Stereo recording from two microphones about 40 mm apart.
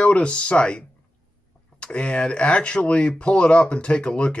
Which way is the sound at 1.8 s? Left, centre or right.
Left.